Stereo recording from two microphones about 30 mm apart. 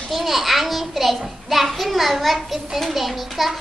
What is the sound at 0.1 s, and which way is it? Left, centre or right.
A child's voice, centre.